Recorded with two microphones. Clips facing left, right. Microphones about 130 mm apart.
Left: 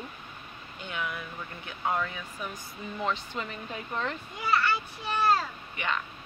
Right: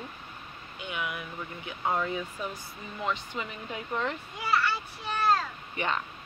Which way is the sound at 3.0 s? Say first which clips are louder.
Even; 10° right (ahead or behind).